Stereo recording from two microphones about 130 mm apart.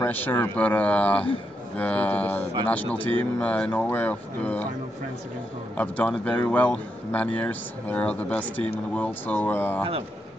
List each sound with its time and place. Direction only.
0.0 s a man's voice: 15° left (ahead or behind)
5.8 s a man's voice: 10° left (ahead or behind)